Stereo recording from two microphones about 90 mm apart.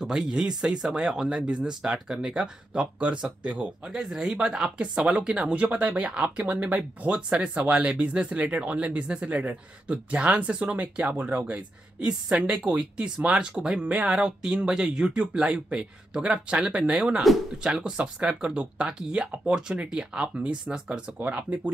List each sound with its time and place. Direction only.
0.0 s speech: 5° right (ahead or behind)
17.2 s speech: centre (ahead or behind)
17.7 s speech: 10° right (ahead or behind)